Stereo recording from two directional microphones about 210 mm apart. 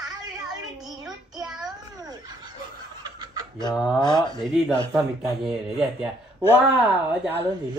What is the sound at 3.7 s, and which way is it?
Speech, 5° right (ahead or behind).